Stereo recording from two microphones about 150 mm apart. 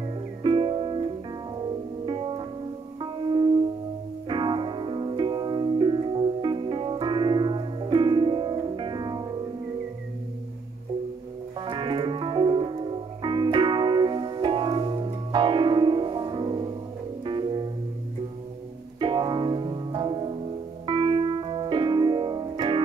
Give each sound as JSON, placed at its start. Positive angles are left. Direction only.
{"t": 0.4, "sound": "music", "side_deg": -35}
{"t": 2.0, "sound": "music", "side_deg": -30}
{"t": 11.6, "sound": "music", "side_deg": -35}
{"t": 18.9, "sound": "music", "side_deg": -30}